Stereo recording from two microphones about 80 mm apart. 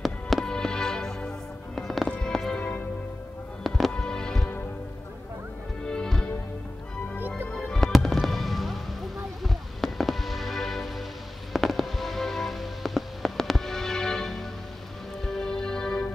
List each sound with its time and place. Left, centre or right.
0.0 s music: centre
5.9 s music: centre
7.2 s music: right
7.4 s fireworks: centre
11.5 s music: centre